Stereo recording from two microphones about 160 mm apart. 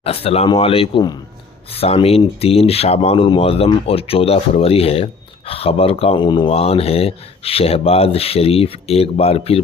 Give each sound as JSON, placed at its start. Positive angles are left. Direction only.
{"t": 0.0, "sound": "speech", "side_deg": 40}